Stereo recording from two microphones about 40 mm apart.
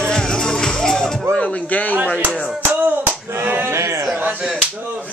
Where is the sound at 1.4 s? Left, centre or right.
Left.